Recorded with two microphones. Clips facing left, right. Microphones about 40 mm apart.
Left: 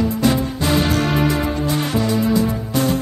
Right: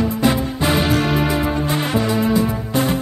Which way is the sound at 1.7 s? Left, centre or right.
Right.